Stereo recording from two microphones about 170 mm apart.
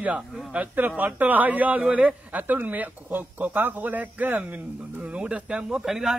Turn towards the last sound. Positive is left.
turn(degrees=0)  # may be behind; listen again after turning